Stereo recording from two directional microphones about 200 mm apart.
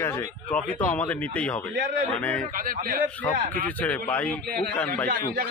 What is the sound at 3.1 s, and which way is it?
Speech, 10° left (ahead or behind).